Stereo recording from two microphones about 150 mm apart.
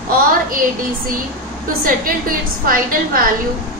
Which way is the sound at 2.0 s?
70° right (ahead or behind).